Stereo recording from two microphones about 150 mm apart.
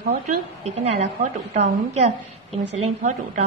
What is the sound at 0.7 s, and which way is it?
A woman's voice, 45° right (ahead or behind).